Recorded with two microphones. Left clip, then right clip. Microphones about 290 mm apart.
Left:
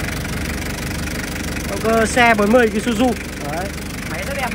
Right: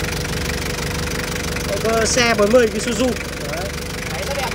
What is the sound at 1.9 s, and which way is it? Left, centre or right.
A woman's voice, centre.